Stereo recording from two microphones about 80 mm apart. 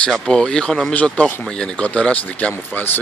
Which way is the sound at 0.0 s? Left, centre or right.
Centre.